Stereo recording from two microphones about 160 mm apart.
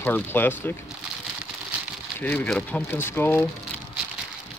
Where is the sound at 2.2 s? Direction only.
10° left (ahead or behind).